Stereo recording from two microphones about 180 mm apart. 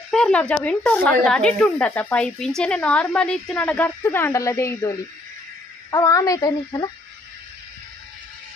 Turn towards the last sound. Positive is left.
turn(degrees=20)  # may be behind; listen again after turning